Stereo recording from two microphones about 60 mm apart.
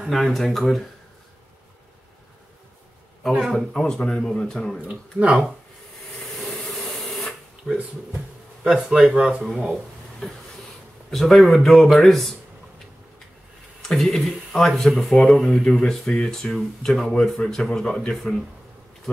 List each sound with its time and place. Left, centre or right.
0.0 s speech: centre
3.3 s speech: centre
5.2 s speech: centre
6.4 s a sound: centre
7.7 s speech: centre
8.9 s speech: centre
10.2 s speech: centre
13.8 s speech: centre